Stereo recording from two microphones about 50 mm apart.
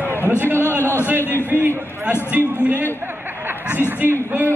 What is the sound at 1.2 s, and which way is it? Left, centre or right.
Speech, left.